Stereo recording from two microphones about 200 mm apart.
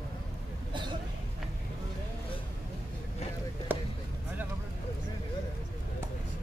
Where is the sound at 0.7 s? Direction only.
25° right (ahead or behind).